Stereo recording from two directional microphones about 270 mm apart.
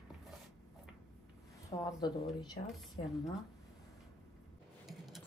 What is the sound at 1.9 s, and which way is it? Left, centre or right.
Speech, centre.